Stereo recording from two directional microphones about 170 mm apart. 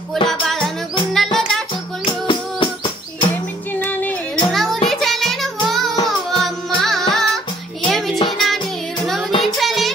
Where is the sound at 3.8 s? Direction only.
10° left (ahead or behind).